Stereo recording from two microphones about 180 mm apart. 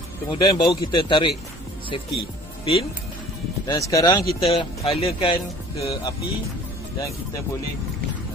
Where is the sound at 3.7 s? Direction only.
20° left (ahead or behind).